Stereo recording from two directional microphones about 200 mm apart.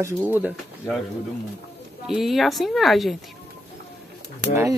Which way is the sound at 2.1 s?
Centre (ahead or behind).